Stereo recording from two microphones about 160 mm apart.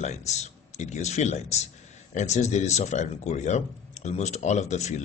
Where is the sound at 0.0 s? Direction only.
45° left (ahead or behind).